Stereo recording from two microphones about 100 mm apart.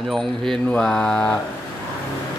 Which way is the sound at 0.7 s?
5° left (ahead or behind).